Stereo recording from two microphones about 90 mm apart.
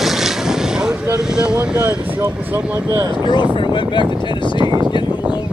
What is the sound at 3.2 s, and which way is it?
Speech, 55° left (ahead or behind).